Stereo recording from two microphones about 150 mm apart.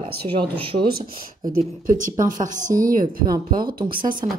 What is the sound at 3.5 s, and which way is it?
Speech, 75° right (ahead or behind).